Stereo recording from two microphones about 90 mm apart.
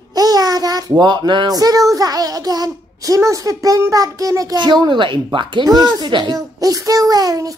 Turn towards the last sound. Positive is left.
turn(degrees=-40)  # may be behind; listen again after turning